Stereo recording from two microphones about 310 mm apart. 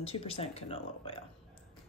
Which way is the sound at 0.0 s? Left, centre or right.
Centre.